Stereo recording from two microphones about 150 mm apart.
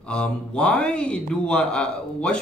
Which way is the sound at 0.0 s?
5° left (ahead or behind).